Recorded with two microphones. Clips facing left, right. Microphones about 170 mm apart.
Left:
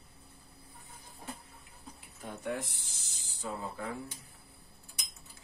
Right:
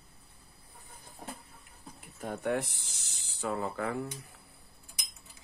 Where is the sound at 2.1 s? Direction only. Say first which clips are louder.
Right 5 dB; 55° right (ahead or behind); by 4.1 s 70° right (ahead or behind).